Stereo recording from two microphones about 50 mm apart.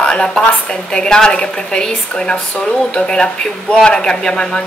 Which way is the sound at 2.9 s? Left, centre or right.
Centre.